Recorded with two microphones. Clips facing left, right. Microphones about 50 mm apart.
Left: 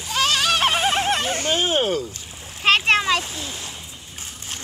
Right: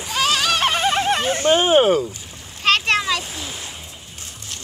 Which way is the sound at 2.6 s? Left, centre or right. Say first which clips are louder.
Left 1 dB; left.